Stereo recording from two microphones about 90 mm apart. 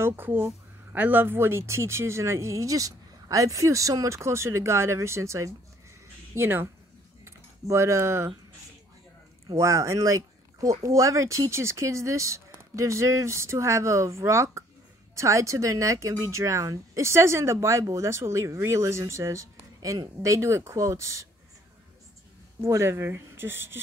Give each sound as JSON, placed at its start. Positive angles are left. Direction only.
{"t": 0.0, "sound": "speech", "side_deg": -25}
{"t": 9.5, "sound": "speech", "side_deg": -35}
{"t": 22.6, "sound": "speech", "side_deg": -30}